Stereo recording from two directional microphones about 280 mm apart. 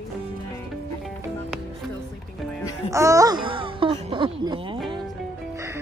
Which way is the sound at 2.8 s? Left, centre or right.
Centre.